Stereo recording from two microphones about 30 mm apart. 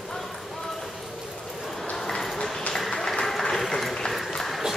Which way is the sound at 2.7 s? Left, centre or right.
Centre.